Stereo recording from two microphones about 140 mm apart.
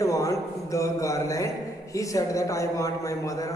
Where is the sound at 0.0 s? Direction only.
25° left (ahead or behind).